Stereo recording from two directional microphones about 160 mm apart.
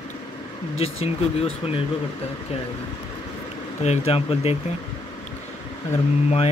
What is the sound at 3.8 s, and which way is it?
Speech, 40° left (ahead or behind).